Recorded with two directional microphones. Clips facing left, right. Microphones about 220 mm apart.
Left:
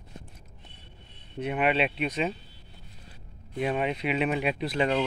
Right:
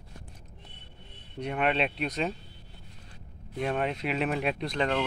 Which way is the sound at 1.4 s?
5° left (ahead or behind).